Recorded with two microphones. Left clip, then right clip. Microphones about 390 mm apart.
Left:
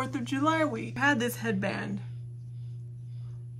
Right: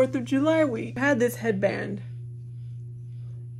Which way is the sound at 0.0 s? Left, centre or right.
Centre.